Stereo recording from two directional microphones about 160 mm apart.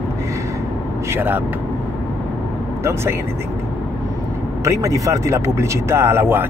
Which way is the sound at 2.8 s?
15° right (ahead or behind).